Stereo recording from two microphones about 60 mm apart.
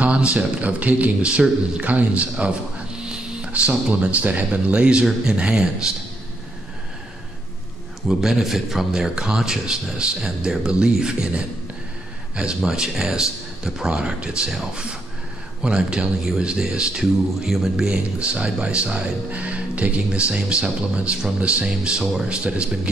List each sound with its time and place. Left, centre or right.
0.0 s speech: right
8.1 s speech: centre
17.0 s mantra: centre
17.8 s speech: centre